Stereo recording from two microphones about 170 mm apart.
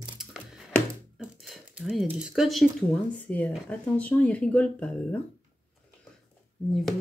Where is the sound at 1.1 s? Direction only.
Centre (ahead or behind).